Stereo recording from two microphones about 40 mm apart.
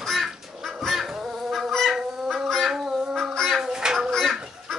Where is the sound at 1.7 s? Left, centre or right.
Centre.